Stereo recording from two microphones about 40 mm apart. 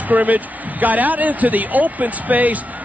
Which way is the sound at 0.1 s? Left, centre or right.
Right.